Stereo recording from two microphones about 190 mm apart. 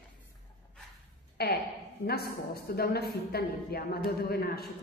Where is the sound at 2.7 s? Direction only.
55° left (ahead or behind).